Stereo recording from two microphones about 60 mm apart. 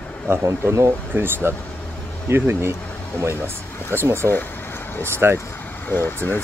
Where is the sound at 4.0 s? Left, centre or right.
Right.